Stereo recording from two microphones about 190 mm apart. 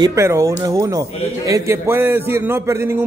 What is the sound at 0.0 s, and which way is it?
A man's voice, 15° right (ahead or behind).